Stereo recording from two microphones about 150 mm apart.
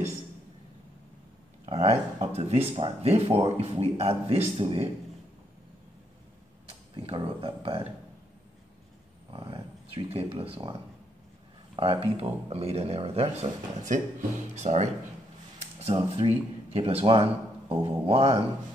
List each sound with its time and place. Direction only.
1.7 s speech: 45° right (ahead or behind)
7.1 s speech: 35° right (ahead or behind)
9.3 s speech: 35° right (ahead or behind)
15.8 s speech: 40° right (ahead or behind)